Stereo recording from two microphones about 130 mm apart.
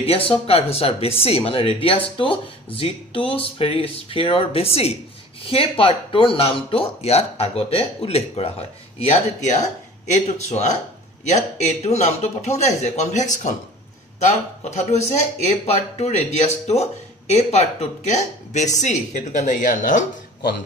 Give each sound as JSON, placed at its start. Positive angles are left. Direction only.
{"t": 0.0, "sound": "speech", "side_deg": 45}
{"t": 14.6, "sound": "speech", "side_deg": 60}